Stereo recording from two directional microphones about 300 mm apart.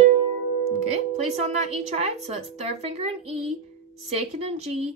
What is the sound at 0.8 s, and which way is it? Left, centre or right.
A woman's voice, right.